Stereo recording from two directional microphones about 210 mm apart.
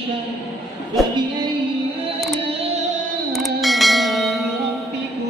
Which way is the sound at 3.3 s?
Centre (ahead or behind).